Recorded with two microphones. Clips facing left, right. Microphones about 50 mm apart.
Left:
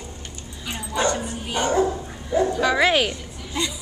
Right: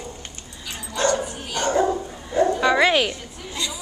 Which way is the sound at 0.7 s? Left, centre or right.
Centre.